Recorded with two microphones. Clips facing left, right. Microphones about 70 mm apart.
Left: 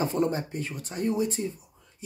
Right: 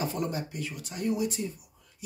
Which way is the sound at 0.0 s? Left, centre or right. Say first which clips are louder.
Left 5 dB; left.